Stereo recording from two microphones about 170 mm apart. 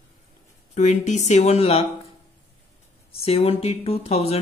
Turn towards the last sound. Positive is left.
turn(degrees=35)  # may be behind; listen again after turning